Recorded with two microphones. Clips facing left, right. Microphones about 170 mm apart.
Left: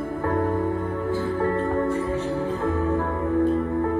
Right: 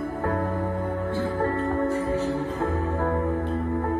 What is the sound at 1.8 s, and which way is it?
Music, 35° right (ahead or behind).